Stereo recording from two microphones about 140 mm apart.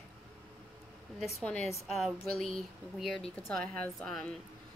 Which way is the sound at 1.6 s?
50° left (ahead or behind).